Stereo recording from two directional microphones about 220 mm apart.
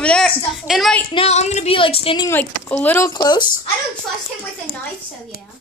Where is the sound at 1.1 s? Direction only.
25° left (ahead or behind).